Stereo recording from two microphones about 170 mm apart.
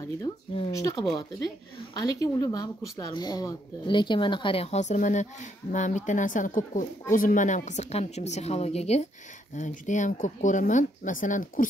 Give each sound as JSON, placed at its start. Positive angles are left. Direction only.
{"t": 0.7, "sound": "speech", "side_deg": 20}